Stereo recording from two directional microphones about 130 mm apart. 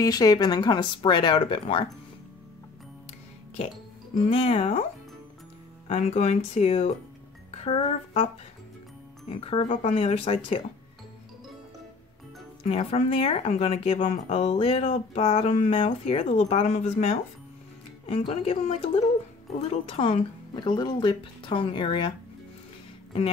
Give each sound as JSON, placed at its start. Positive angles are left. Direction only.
{"t": 0.0, "sound": "speech", "side_deg": 30}
{"t": 4.3, "sound": "speech", "side_deg": 50}
{"t": 5.9, "sound": "speech", "side_deg": 60}
{"t": 9.3, "sound": "speech", "side_deg": 50}
{"t": 9.7, "sound": "speech", "side_deg": 60}
{"t": 12.6, "sound": "speech", "side_deg": 50}
{"t": 18.4, "sound": "speech", "side_deg": 50}